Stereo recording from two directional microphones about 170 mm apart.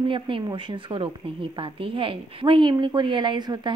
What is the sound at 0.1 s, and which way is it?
A woman's voice, 30° right (ahead or behind).